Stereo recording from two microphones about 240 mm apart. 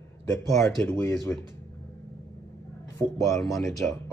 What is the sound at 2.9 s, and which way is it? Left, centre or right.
Speech, centre.